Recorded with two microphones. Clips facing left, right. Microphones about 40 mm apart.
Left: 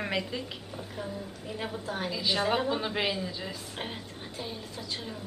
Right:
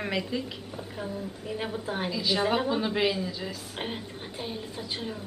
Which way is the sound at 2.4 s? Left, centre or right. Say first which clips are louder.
Right 1 dB; centre.